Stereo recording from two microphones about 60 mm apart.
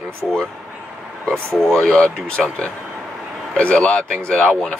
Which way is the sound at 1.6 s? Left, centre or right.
Centre.